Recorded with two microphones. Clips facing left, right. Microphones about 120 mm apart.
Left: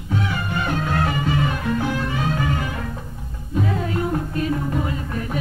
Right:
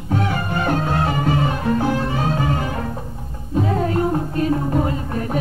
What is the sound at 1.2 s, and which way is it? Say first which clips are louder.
Music: right 3 dB; 40° right (ahead or behind).